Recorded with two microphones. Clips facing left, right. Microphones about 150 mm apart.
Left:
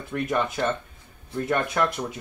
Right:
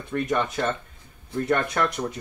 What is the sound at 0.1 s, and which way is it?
Speech, 5° left (ahead or behind).